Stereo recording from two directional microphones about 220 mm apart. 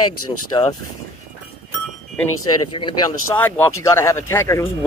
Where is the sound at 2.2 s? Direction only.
70° left (ahead or behind).